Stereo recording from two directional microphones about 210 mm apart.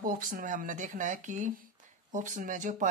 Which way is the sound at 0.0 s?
40° right (ahead or behind).